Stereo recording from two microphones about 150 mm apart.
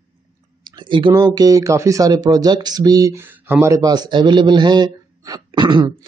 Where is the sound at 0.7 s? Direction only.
30° right (ahead or behind).